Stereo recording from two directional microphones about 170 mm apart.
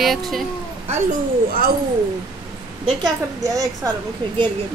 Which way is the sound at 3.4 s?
20° right (ahead or behind).